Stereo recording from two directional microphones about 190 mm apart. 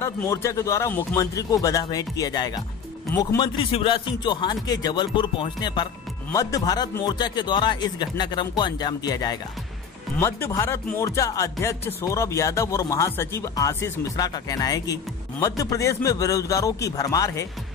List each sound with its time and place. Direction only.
0.0 s speech: 15° left (ahead or behind)